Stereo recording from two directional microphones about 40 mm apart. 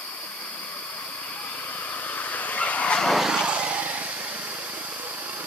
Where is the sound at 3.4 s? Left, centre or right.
Right.